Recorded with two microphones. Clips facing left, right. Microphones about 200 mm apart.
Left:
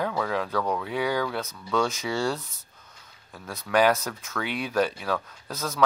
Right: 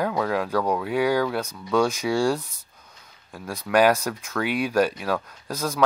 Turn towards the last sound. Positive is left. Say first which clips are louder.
# right 4 dB
turn(degrees=-15)  # may be behind; listen again after turning